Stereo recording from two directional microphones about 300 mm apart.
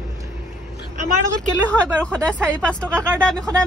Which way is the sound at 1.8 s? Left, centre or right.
Centre.